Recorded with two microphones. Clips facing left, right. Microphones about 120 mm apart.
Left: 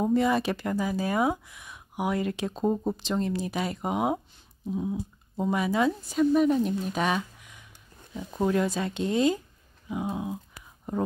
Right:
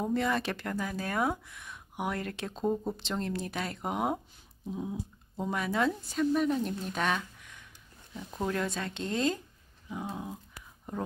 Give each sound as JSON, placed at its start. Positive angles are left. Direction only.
{"t": 0.0, "sound": "speech", "side_deg": 10}
{"t": 2.6, "sound": "speech", "side_deg": 20}
{"t": 3.0, "sound": "speech", "side_deg": 5}
{"t": 4.6, "sound": "a sound", "side_deg": 0}
{"t": 5.4, "sound": "speech", "side_deg": 10}